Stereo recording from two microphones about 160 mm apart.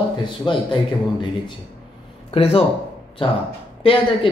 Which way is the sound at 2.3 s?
40° left (ahead or behind).